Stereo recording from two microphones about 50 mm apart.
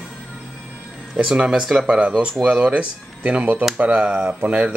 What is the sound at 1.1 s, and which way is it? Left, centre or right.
Speech, centre.